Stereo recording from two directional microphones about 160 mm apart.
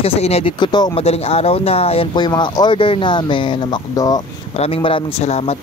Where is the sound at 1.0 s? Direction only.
40° left (ahead or behind); by 4.2 s 25° left (ahead or behind).